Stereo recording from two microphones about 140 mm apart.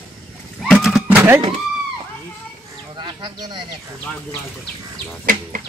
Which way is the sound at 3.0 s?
35° right (ahead or behind).